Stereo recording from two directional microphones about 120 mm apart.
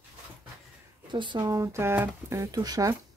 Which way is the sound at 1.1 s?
40° right (ahead or behind).